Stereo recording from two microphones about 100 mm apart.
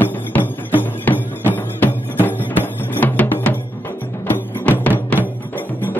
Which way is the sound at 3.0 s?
20° left (ahead or behind).